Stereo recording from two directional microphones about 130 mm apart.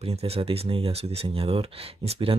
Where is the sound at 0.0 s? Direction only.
50° right (ahead or behind).